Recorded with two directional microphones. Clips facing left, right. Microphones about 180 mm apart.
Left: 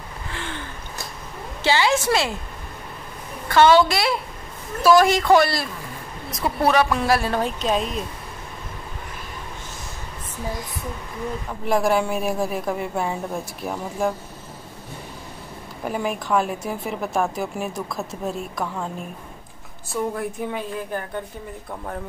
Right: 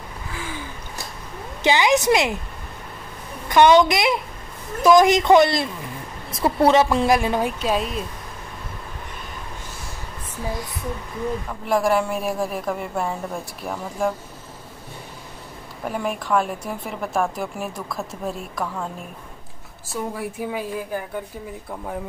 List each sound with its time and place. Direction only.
0.3 s a sound: 5° right (ahead or behind)
1.6 s speech: 15° right (ahead or behind)
3.4 s a man's voice: 15° right (ahead or behind)
11.6 s a woman's voice: centre (ahead or behind)
15.8 s a woman's voice: centre (ahead or behind)
19.9 s speech: 5° right (ahead or behind)